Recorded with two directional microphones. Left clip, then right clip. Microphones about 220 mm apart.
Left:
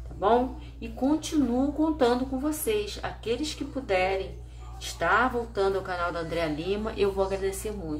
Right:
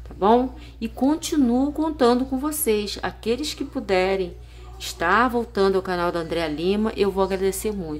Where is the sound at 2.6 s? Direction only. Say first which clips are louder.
Right 5 dB; 45° right (ahead or behind).